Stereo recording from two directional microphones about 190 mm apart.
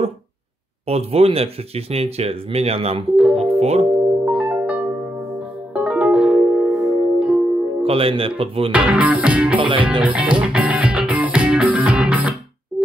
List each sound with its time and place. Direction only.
0.8 s speech: 30° right (ahead or behind)
3.3 s music: 35° right (ahead or behind)
3.9 s music: 5° right (ahead or behind)
7.8 s speech: 30° right (ahead or behind)
8.7 s music: 5° right (ahead or behind)
9.6 s speech: 25° right (ahead or behind)
10.0 s music: 5° right (ahead or behind)